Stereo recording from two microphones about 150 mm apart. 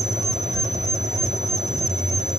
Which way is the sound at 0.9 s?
25° left (ahead or behind).